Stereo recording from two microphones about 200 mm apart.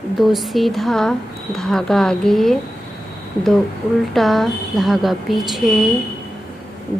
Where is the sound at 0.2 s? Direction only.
Centre (ahead or behind).